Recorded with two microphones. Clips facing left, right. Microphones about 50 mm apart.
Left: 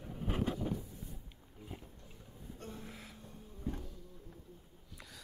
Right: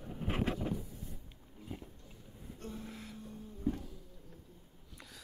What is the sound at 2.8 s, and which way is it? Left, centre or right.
Music, centre.